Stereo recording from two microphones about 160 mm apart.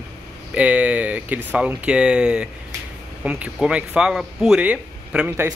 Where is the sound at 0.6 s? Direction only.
10° right (ahead or behind).